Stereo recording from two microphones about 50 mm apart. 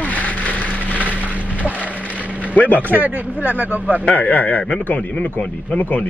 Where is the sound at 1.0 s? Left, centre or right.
Right.